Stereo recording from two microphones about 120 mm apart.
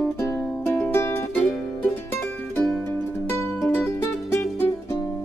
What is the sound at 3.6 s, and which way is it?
Music, 20° left (ahead or behind).